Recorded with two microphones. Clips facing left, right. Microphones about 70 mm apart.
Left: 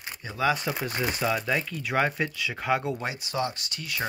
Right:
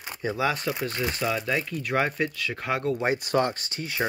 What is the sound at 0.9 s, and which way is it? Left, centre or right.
Speech, centre.